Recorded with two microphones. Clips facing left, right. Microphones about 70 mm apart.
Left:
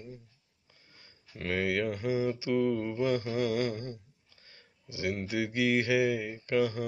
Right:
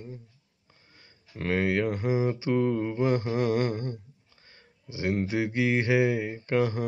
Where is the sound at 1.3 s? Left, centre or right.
Right.